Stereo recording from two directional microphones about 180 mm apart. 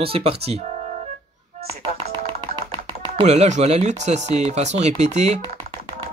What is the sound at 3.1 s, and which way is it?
Speech, 35° right (ahead or behind).